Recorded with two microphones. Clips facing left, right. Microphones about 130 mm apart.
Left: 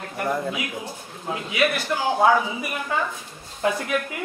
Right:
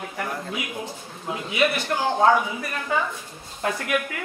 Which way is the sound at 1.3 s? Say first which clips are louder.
Even; centre (ahead or behind).